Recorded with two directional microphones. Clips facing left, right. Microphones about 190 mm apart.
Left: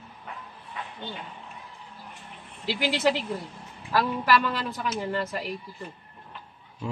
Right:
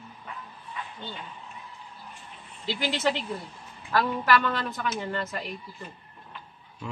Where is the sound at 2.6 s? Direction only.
10° left (ahead or behind).